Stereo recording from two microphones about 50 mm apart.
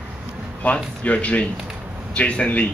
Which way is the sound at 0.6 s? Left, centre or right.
Left.